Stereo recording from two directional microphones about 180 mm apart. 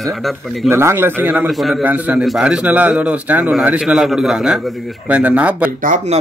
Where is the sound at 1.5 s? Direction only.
Centre (ahead or behind).